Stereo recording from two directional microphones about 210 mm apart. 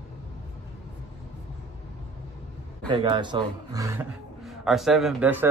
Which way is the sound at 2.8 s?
20° right (ahead or behind).